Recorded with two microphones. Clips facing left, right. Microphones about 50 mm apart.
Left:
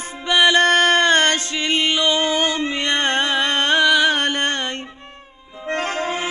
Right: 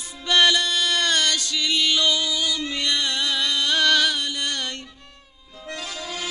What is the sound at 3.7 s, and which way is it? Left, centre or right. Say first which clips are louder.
Music: left 4 dB; centre.